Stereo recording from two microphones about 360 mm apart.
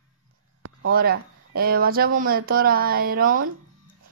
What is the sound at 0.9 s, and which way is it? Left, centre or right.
Speech, right.